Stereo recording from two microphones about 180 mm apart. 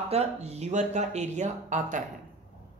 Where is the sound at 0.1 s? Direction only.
35° right (ahead or behind).